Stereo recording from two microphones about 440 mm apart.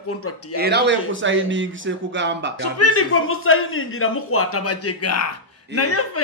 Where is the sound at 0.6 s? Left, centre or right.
Right.